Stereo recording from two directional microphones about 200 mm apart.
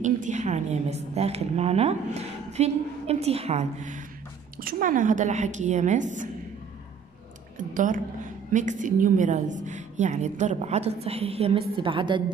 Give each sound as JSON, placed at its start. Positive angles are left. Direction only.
{"t": 0.0, "sound": "a woman's voice", "side_deg": -40}
{"t": 4.6, "sound": "a woman's voice", "side_deg": -45}
{"t": 7.5, "sound": "a woman's voice", "side_deg": -40}